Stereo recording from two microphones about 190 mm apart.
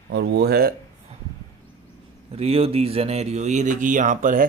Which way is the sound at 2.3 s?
30° right (ahead or behind).